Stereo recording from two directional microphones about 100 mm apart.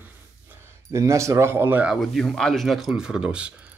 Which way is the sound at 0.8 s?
30° right (ahead or behind).